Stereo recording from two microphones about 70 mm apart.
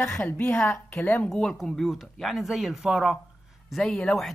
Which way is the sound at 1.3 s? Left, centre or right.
Centre.